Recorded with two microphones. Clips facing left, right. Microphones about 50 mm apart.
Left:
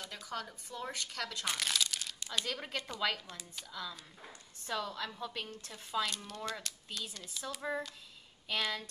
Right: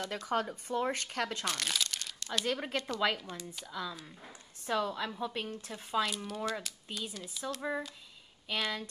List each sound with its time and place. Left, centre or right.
0.0 s speech: right
0.3 s speech: right
1.4 s speech: centre
1.7 s crumpling: centre
2.1 s a sound: centre
2.4 s speech: centre
6.0 s speech: centre